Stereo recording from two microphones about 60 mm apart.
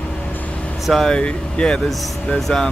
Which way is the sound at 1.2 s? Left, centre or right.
Centre.